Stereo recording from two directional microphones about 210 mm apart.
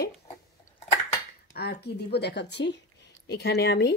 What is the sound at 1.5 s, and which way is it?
Speech, 50° left (ahead or behind).